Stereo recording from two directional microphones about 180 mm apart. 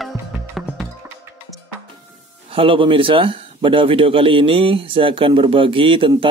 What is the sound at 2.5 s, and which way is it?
Speech, 30° right (ahead or behind).